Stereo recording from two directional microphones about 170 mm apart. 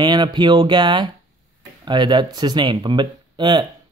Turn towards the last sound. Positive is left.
turn(degrees=-25)  # may be behind; listen again after turning